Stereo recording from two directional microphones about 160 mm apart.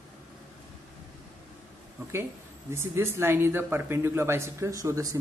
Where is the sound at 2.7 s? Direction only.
15° right (ahead or behind).